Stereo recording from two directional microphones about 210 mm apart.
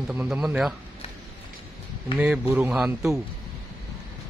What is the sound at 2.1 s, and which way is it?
Speech, 5° right (ahead or behind).